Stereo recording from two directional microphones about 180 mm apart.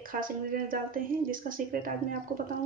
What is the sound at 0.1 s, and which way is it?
Speech, 50° right (ahead or behind).